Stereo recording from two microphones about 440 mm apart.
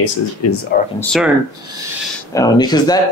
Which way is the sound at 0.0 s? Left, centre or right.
Left.